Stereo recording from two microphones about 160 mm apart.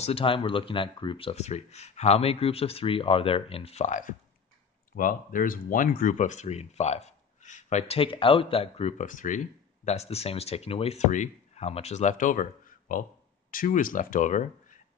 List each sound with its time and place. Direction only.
0.0 s speech: 35° left (ahead or behind); by 9.4 s 55° left (ahead or behind)
9.8 s speech: 40° left (ahead or behind)